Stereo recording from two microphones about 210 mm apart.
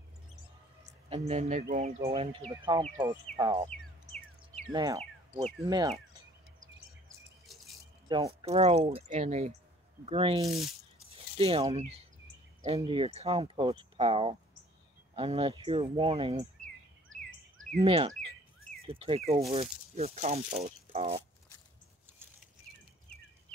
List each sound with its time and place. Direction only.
1.1 s speech: 30° right (ahead or behind)
2.0 s speech: 20° right (ahead or behind)
4.7 s chirp: 25° right (ahead or behind)
5.7 s speech: 20° right (ahead or behind)
8.4 s speech: 30° right (ahead or behind)
17.1 s a sound: 70° right (ahead or behind)
17.8 s speech: 25° right (ahead or behind)